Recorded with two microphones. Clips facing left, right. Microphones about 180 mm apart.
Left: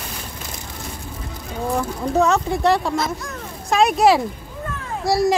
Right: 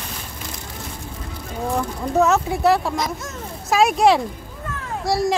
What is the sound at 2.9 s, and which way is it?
Speech, 15° right (ahead or behind).